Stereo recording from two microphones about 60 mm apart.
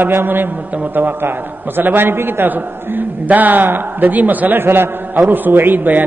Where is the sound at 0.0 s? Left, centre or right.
Right.